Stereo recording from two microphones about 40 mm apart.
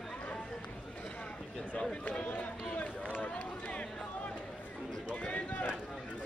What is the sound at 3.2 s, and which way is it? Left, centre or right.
Run, left.